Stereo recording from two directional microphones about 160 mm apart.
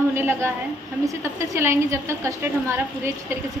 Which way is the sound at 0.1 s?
15° right (ahead or behind).